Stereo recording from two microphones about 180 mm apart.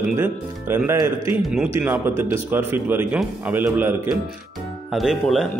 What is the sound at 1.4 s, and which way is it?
Speech, centre (ahead or behind).